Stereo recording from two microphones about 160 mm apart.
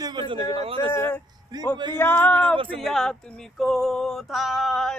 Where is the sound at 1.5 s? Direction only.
25° right (ahead or behind).